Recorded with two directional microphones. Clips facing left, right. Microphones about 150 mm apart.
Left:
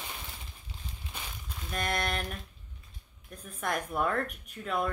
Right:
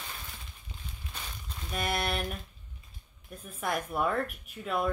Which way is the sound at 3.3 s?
5° right (ahead or behind).